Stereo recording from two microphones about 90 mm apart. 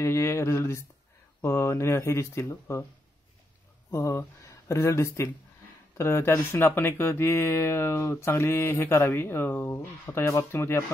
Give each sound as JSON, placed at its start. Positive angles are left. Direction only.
{"t": 0.0, "sound": "speech", "side_deg": 30}
{"t": 3.9, "sound": "speech", "side_deg": 35}